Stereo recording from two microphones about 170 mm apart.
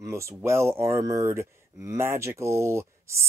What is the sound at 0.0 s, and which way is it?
Speech, 15° right (ahead or behind).